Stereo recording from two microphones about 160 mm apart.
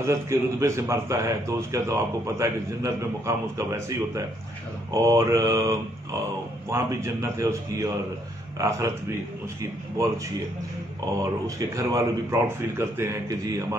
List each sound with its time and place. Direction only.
0.0 s a man's voice: 15° right (ahead or behind)
11.4 s speech: 20° right (ahead or behind)